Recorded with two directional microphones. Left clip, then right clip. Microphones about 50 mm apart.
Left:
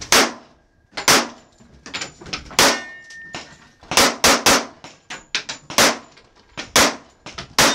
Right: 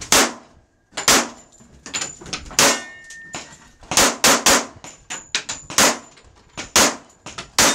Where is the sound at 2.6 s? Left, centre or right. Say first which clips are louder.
Left 1 dB; centre.